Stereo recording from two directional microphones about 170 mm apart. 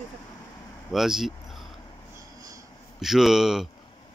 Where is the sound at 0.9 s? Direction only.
Centre (ahead or behind).